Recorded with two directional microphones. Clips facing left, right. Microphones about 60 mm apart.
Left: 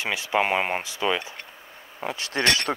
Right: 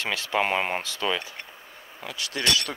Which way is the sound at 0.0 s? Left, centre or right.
Centre.